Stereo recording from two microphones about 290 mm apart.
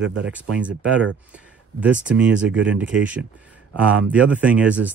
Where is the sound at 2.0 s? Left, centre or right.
Centre.